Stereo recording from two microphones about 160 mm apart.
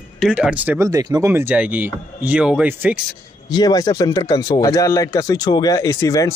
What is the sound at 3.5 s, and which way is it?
Speech, 25° left (ahead or behind).